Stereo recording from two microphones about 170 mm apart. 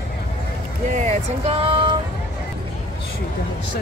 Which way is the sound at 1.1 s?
35° right (ahead or behind).